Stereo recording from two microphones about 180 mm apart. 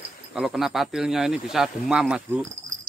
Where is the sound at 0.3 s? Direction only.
Centre (ahead or behind).